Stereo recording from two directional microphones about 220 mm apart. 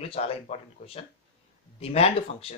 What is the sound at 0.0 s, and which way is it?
Speech, 25° left (ahead or behind).